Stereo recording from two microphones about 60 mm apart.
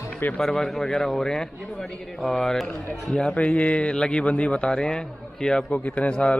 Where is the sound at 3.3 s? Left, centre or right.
Left.